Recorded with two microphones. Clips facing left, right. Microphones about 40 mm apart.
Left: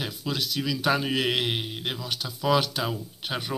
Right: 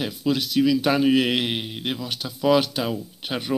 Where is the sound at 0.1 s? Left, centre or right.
Right.